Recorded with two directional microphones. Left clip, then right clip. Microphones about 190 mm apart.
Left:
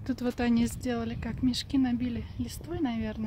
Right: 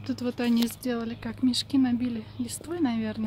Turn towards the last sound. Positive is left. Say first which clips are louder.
# right 4 dB
turn(degrees=10)  # may be behind; listen again after turning